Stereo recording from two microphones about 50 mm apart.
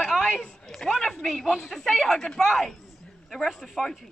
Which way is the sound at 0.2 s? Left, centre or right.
Centre.